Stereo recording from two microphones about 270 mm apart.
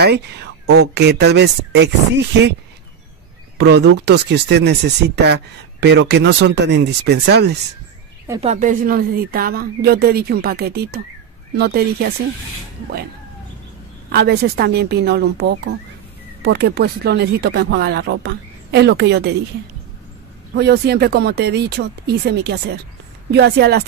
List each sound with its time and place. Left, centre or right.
0.0 s speech: right
3.5 s speech: right
8.4 s speech: right
14.1 s speech: right
20.5 s speech: right